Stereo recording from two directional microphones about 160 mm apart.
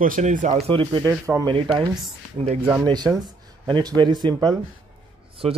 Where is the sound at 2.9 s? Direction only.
25° right (ahead or behind).